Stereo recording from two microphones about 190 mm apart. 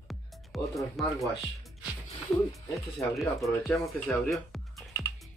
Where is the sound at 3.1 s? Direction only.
Centre (ahead or behind).